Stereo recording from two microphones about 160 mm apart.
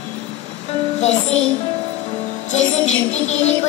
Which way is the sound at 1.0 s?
45° left (ahead or behind).